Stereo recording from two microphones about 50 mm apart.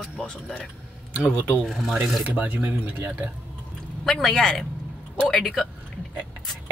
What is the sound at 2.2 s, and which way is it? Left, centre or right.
Speech, right.